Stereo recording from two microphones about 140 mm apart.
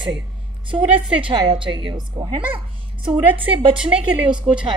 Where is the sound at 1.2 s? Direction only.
35° right (ahead or behind).